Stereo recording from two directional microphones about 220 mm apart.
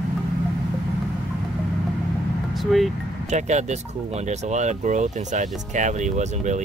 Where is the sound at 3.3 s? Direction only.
30° right (ahead or behind).